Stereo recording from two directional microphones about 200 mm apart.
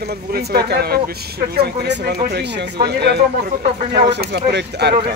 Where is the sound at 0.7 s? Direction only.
55° right (ahead or behind).